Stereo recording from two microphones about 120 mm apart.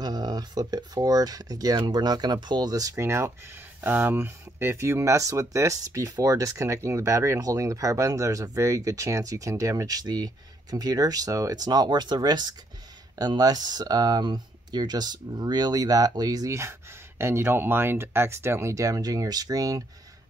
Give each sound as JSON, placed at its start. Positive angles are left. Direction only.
{"t": 0.0, "sound": "speech", "side_deg": -35}